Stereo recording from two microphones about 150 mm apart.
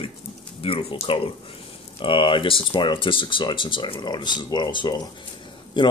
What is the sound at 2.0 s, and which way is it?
Speech, 35° left (ahead or behind).